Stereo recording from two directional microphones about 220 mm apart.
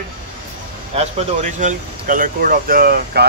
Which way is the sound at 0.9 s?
35° right (ahead or behind).